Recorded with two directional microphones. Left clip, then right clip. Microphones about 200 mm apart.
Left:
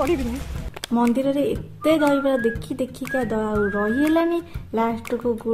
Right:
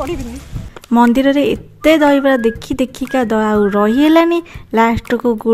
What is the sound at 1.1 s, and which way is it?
Speech, 50° right (ahead or behind).